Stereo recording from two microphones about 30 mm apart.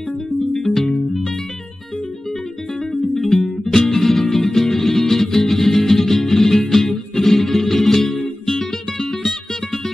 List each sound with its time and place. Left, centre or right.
0.7 s music: left
3.6 s music: centre